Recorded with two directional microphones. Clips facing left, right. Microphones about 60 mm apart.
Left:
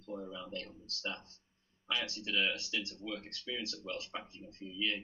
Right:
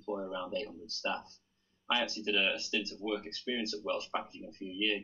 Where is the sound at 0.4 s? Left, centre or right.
Right.